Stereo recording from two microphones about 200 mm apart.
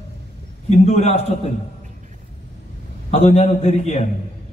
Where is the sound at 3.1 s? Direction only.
35° left (ahead or behind).